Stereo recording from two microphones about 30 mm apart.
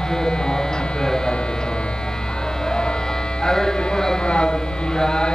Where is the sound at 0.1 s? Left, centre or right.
Left.